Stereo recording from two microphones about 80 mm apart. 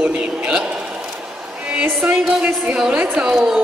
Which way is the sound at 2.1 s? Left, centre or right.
Centre.